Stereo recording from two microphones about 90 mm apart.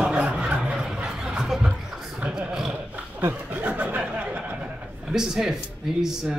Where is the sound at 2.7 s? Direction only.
20° right (ahead or behind).